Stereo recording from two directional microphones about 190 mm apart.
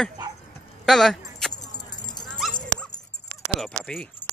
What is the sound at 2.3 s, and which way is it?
Dog, centre (ahead or behind).